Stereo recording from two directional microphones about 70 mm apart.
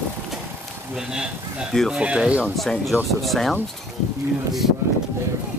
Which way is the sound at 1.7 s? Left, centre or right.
Centre.